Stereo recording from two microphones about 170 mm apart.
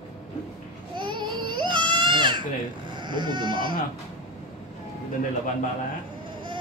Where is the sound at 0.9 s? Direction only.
25° right (ahead or behind).